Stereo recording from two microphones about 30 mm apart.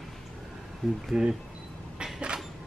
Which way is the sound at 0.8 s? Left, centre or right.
Centre.